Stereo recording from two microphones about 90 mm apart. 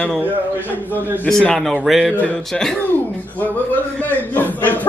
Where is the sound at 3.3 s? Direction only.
20° left (ahead or behind).